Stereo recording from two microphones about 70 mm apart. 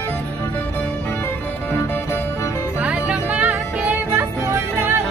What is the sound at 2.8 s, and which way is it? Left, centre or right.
Music, centre.